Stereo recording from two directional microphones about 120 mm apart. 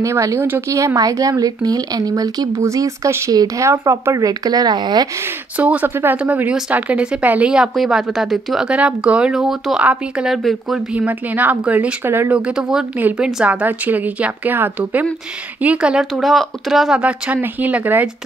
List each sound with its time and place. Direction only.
0.0 s speech: 25° right (ahead or behind)
5.6 s a woman's voice: 10° right (ahead or behind)
11.0 s a woman's voice: 15° right (ahead or behind)
12.4 s a woman's voice: 10° right (ahead or behind)